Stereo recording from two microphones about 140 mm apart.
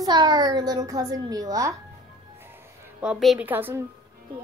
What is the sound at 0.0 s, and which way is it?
A woman's voice, 30° right (ahead or behind).